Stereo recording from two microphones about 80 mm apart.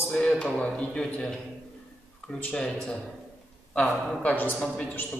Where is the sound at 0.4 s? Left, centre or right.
Centre.